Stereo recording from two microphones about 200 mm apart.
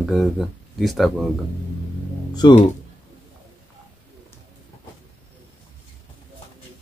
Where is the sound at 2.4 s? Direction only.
20° left (ahead or behind).